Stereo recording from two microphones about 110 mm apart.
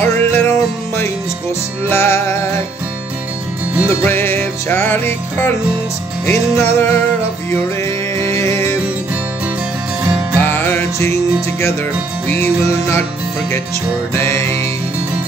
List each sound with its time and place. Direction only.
0.0 s music: 20° left (ahead or behind)
4.0 s music: 20° left (ahead or behind)
8.2 s music: 25° left (ahead or behind)
10.4 s music: 20° left (ahead or behind)
12.3 s music: 20° left (ahead or behind)
14.1 s music: 25° left (ahead or behind)